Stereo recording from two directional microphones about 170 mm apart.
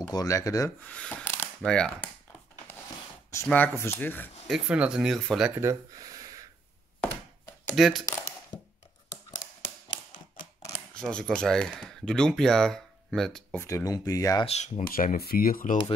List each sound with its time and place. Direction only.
0.1 s speech: 20° left (ahead or behind)
0.8 s speech: 5° left (ahead or behind)
3.4 s speech: 10° left (ahead or behind)
4.5 s speech: 5° right (ahead or behind)
5.6 s speech: 20° right (ahead or behind)
7.7 s speech: centre (ahead or behind)
8.0 s a sound: 20° left (ahead or behind)
11.0 s speech: 5° left (ahead or behind)
13.6 s speech: 15° left (ahead or behind)
14.4 s speech: 40° left (ahead or behind)
14.9 s speech: 55° left (ahead or behind)